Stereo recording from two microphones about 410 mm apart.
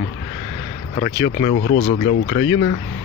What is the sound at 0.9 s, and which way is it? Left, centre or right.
Speech, centre.